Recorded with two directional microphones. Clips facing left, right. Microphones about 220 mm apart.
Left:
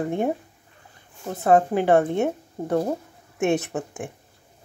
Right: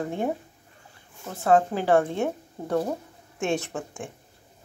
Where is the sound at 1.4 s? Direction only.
20° left (ahead or behind).